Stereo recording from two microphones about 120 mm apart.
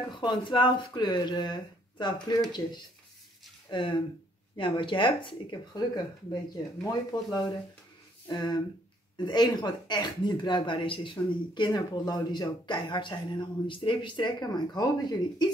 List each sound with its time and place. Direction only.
0.1 s speech: 40° left (ahead or behind)
3.7 s speech: 45° left (ahead or behind)